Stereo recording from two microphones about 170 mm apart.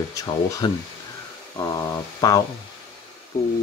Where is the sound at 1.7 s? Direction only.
20° left (ahead or behind).